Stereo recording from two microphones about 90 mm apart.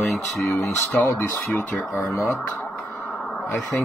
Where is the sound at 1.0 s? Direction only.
30° left (ahead or behind).